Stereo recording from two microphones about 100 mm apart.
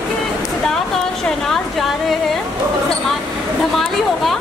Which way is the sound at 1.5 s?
Centre (ahead or behind).